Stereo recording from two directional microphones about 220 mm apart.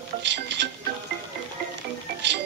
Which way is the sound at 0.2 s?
55° right (ahead or behind).